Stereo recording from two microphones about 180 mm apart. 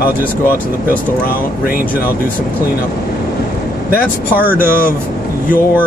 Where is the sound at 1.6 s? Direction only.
55° left (ahead or behind).